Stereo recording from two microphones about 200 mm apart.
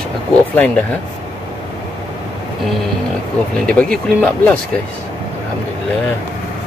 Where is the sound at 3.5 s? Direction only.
5° left (ahead or behind).